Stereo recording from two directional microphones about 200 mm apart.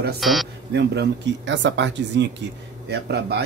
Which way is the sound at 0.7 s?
60° right (ahead or behind).